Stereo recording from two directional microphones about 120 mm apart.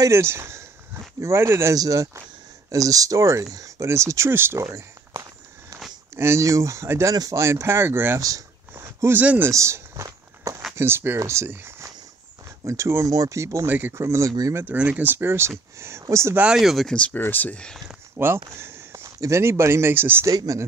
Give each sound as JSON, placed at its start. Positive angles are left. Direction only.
{"t": 0.0, "sound": "speech", "side_deg": -20}
{"t": 8.2, "sound": "a sound", "side_deg": -30}
{"t": 9.5, "sound": "walk", "side_deg": -25}
{"t": 10.8, "sound": "speech", "side_deg": -20}
{"t": 14.6, "sound": "speech", "side_deg": -15}
{"t": 16.3, "sound": "speech", "side_deg": -5}
{"t": 18.1, "sound": "speech", "side_deg": -20}